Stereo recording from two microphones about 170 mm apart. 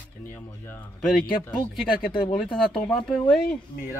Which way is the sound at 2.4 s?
5° left (ahead or behind).